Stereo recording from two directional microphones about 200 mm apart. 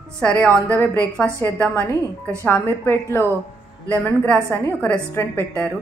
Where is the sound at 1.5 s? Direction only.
10° left (ahead or behind).